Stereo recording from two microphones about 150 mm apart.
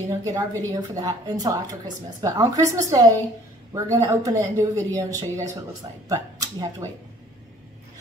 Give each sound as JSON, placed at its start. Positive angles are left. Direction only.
{"t": 0.2, "sound": "speech", "side_deg": -25}